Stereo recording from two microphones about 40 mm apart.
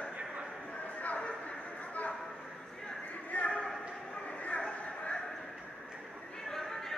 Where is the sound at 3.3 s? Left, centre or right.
Left.